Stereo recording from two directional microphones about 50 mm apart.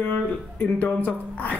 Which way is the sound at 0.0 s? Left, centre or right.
Left.